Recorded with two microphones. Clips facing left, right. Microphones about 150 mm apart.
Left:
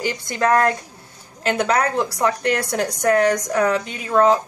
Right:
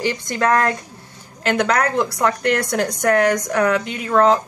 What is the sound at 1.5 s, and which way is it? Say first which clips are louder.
Speech: right 1 dB; 30° left (ahead or behind).